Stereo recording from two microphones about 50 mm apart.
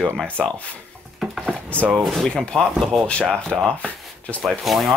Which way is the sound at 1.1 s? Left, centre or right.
Centre.